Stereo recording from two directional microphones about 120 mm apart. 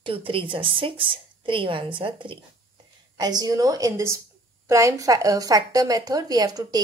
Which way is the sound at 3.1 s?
35° right (ahead or behind).